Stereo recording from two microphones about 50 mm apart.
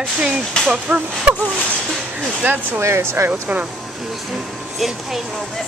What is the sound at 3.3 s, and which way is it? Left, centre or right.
Speech, right.